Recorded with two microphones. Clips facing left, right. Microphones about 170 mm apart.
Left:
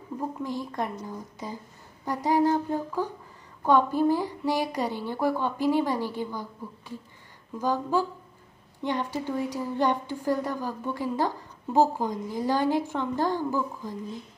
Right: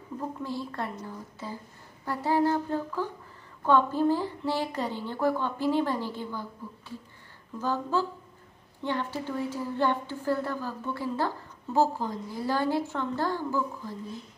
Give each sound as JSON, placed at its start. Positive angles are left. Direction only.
{"t": 0.4, "sound": "a woman's voice", "side_deg": 15}
{"t": 7.5, "sound": "a woman's voice", "side_deg": 15}